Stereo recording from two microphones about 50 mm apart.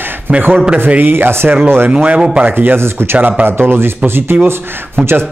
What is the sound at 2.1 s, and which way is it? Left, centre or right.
Speech, right.